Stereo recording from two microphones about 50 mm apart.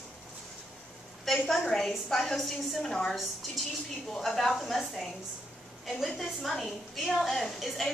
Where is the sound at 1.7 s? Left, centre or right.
Centre.